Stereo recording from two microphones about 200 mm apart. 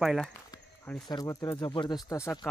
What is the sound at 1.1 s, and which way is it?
Speech, 15° left (ahead or behind).